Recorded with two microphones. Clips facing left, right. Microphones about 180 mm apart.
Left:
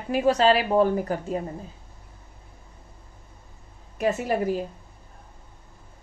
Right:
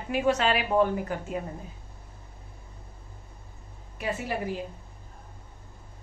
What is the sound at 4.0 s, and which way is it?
Speech, 45° left (ahead or behind).